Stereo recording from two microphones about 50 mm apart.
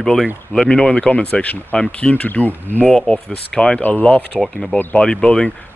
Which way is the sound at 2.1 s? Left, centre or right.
Left.